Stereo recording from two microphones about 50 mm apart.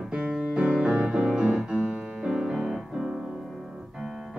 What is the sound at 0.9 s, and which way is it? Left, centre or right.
Music, right.